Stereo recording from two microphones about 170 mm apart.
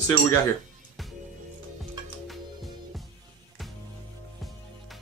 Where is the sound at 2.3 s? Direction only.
Centre (ahead or behind).